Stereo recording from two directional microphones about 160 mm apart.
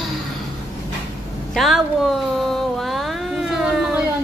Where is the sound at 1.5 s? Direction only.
Centre (ahead or behind).